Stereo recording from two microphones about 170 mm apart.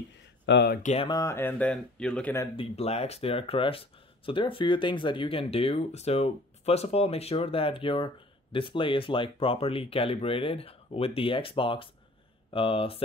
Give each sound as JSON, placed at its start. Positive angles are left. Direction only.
{"t": 0.5, "sound": "speech", "side_deg": 80}
{"t": 1.0, "sound": "speech", "side_deg": 20}
{"t": 2.5, "sound": "speech", "side_deg": 35}